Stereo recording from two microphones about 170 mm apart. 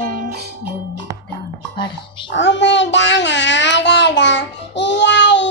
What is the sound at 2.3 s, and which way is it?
Child singing, 90° left.